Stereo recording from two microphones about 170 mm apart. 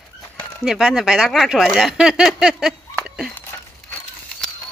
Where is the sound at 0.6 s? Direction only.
Centre (ahead or behind).